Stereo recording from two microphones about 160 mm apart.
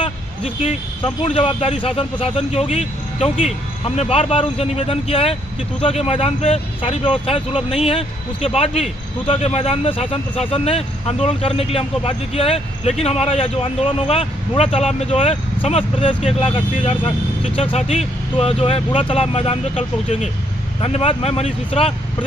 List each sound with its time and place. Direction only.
0.0 s speech: 35° left (ahead or behind)